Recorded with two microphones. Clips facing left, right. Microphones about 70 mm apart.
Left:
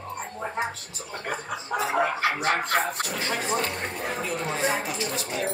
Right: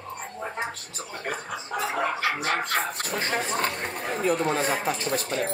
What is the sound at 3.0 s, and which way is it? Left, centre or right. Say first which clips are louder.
Speech: right 2 dB; right.